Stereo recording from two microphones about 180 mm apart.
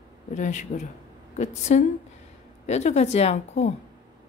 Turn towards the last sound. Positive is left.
turn(degrees=40)  # may be behind; listen again after turning